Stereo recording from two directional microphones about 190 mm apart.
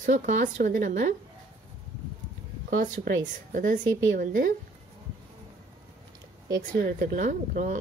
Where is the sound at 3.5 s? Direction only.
40° right (ahead or behind).